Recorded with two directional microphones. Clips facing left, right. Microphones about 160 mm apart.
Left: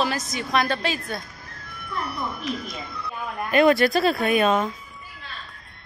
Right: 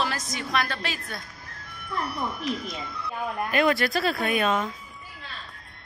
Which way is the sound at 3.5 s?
25° left (ahead or behind).